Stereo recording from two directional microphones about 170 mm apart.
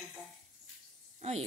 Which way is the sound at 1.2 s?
40° right (ahead or behind).